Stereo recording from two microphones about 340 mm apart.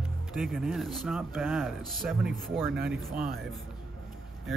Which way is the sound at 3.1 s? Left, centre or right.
Right.